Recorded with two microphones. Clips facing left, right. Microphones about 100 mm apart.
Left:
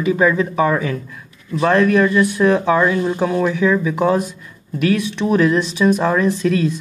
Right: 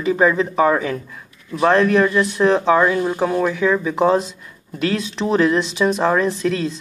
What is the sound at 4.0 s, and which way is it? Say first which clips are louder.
Speech: right 1 dB; 20° right (ahead or behind).